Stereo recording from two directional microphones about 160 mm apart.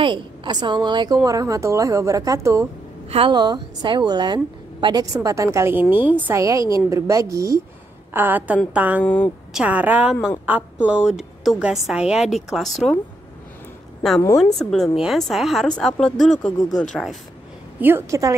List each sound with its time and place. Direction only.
0.0 s a woman's voice: 30° right (ahead or behind)
3.1 s a woman's voice: 35° right (ahead or behind); by 9.0 s 10° right (ahead or behind)
9.0 s a woman's voice: 10° left (ahead or behind)
9.5 s a woman's voice: 5° right (ahead or behind)
14.4 s speech: 5° left (ahead or behind)
17.7 s a woman's voice: 15° right (ahead or behind)